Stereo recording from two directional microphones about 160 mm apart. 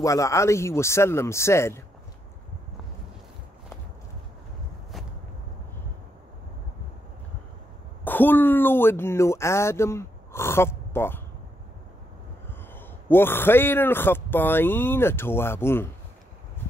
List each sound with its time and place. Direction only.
0.0 s speech: 20° left (ahead or behind)
8.0 s speech: 10° left (ahead or behind)
12.7 s speech: 15° left (ahead or behind)